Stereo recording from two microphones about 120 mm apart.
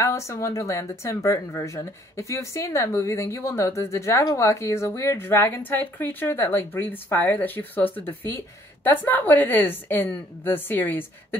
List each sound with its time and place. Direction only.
0.0 s a woman's voice: 25° left (ahead or behind)